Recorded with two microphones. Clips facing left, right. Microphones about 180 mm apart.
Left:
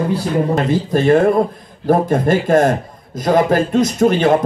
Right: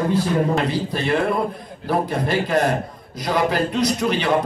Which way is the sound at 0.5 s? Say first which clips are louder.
Left 6 dB; 45° left (ahead or behind).